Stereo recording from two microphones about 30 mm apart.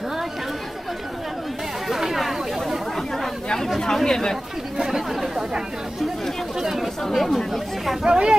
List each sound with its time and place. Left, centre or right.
1.9 s chatter: centre
3.8 s chatter: centre
4.7 s chatter: centre
6.6 s chatter: centre
8.0 s speech: right